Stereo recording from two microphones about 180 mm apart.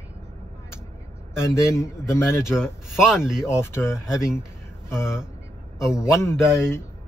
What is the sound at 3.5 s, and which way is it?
Speech, 15° left (ahead or behind).